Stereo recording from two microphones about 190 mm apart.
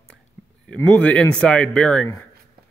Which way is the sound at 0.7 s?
5° left (ahead or behind).